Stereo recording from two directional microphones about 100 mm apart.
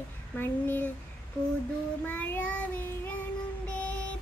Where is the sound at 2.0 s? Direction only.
15° left (ahead or behind).